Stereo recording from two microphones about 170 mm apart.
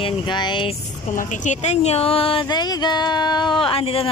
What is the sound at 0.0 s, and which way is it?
Speech, 25° left (ahead or behind).